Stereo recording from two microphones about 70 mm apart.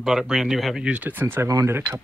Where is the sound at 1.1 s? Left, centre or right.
Right.